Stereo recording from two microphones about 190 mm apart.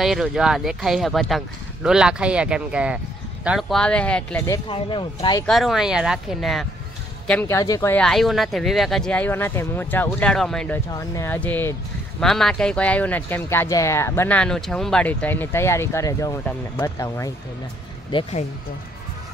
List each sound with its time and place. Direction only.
0.0 s speech: centre (ahead or behind)
4.5 s speech: 25° left (ahead or behind)
5.5 s speech: centre (ahead or behind)
7.2 s speech: 10° left (ahead or behind)
8.0 s speech: centre (ahead or behind)
10.9 s speech: 15° left (ahead or behind)